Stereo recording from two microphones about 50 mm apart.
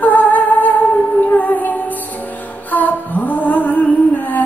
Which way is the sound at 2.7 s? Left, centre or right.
Left.